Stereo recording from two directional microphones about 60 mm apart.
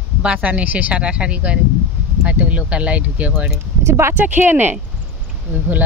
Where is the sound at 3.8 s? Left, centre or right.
Right.